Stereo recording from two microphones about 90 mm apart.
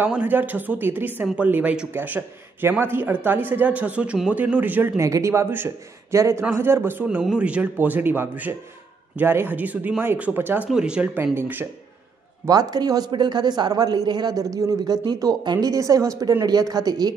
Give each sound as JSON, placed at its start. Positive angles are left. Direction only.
{"t": 0.2, "sound": "speech", "side_deg": -20}
{"t": 4.9, "sound": "speech", "side_deg": -35}
{"t": 10.7, "sound": "speech", "side_deg": -10}
{"t": 11.3, "sound": "speech", "side_deg": -20}
{"t": 12.4, "sound": "a man's voice", "side_deg": -45}